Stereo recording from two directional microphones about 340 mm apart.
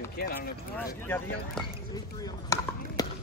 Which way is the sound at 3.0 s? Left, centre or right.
Centre.